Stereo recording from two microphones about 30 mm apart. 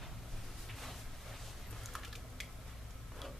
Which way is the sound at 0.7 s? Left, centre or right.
Centre.